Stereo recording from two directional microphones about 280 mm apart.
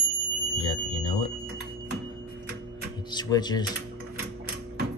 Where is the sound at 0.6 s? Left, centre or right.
Centre.